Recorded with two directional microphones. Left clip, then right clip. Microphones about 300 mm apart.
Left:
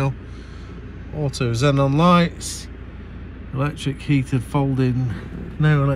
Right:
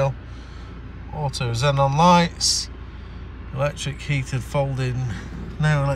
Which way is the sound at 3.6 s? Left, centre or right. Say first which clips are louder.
Right 1 dB; centre.